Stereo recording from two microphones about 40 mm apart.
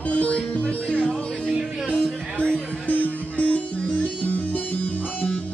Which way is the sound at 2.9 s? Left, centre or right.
Left.